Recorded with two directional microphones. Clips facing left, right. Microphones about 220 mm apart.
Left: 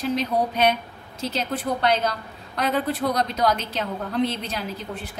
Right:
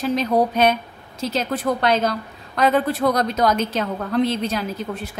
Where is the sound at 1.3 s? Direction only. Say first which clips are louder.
Right 4 dB; 45° right (ahead or behind).